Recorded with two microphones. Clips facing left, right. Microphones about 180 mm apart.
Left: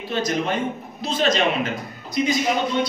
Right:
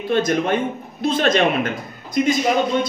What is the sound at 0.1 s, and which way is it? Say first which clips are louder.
Speech: right 5 dB; 55° right (ahead or behind).